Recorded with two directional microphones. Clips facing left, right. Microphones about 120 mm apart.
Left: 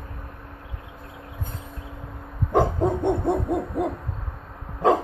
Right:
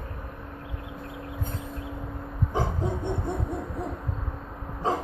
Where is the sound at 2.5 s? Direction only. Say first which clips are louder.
Left 9 dB; 60° left (ahead or behind).